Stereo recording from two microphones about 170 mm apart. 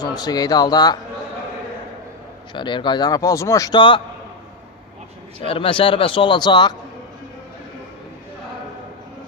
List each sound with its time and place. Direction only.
0.0 s a man's voice: 25° left (ahead or behind)
2.5 s a man's voice: 30° left (ahead or behind)
5.4 s speech: 30° left (ahead or behind)